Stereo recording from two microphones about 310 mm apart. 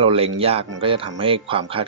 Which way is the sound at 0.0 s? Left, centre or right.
Centre.